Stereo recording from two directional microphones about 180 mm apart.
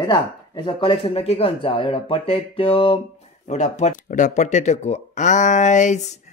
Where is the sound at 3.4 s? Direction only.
40° left (ahead or behind).